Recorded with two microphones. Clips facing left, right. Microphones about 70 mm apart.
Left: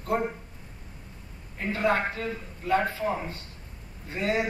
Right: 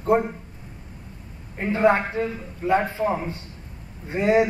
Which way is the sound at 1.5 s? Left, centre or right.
Right.